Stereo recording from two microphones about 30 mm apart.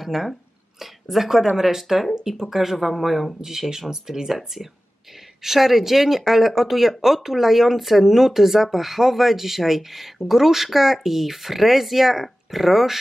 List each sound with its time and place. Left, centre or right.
0.0 s speech: centre
4.3 s speech: centre